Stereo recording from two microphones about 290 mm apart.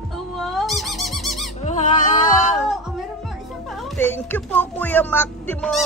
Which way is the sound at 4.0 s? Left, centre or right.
Centre.